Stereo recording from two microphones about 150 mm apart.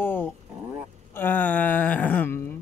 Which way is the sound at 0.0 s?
15° left (ahead or behind).